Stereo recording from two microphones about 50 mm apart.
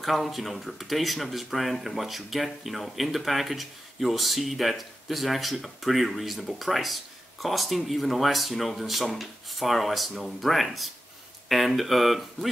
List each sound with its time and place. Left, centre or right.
0.0 s speech: centre